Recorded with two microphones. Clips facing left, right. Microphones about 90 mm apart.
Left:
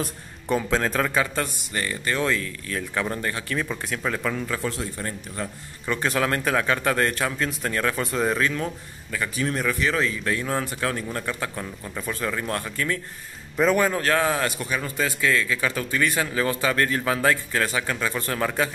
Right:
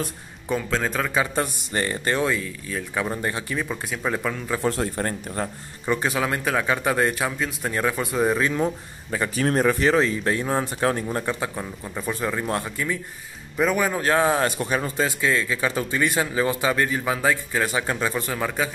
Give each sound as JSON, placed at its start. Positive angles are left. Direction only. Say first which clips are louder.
{"t": 0.0, "sound": "speech", "louder": "even", "side_deg": 0}
{"t": 1.1, "sound": "a man's voice", "louder": "right 1 dB", "side_deg": -15}
{"t": 1.7, "sound": "speech", "louder": "right 3 dB", "side_deg": -30}
{"t": 2.2, "sound": "a man's voice", "louder": "right 1 dB", "side_deg": -15}
{"t": 3.5, "sound": "a man's voice", "louder": "even", "side_deg": -5}
{"t": 4.6, "sound": "speech", "louder": "right 5 dB", "side_deg": -45}
{"t": 5.9, "sound": "a man's voice", "louder": "even", "side_deg": -10}
{"t": 9.4, "sound": "a man's voice", "louder": "right 5 dB", "side_deg": -40}
{"t": 13.9, "sound": "speech", "louder": "right 2 dB", "side_deg": -20}
{"t": 17.7, "sound": "speech", "louder": "right 2 dB", "side_deg": -25}
{"t": 18.2, "sound": "speech", "louder": "left 1 dB", "side_deg": -5}